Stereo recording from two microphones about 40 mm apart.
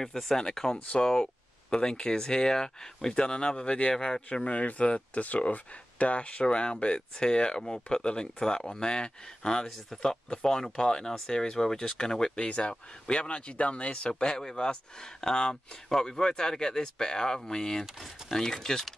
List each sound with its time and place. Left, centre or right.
0.0 s speech: centre
4.5 s speech: left; by 18.9 s centre